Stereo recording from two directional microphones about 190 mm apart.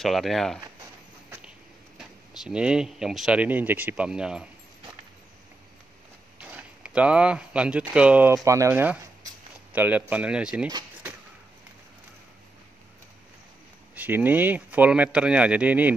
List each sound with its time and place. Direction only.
0.0 s speech: centre (ahead or behind)
2.0 s speech: centre (ahead or behind)
6.4 s speech: 5° right (ahead or behind)
10.7 s a sound: 20° right (ahead or behind)
13.9 s speech: 10° right (ahead or behind)